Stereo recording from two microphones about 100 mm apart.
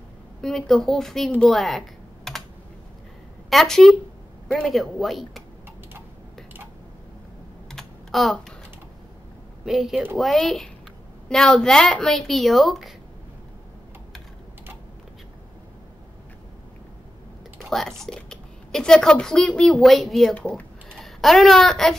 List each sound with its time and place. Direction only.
0.4 s speech: 5° left (ahead or behind)
1.3 s typing: 5° left (ahead or behind)
3.4 s a woman's voice: 5° left (ahead or behind)
7.7 s typing: centre (ahead or behind)
9.7 s speech: centre (ahead or behind)
17.6 s speech: 5° left (ahead or behind)
20.3 s speech: 15° left (ahead or behind)
21.0 s a child's voice: centre (ahead or behind)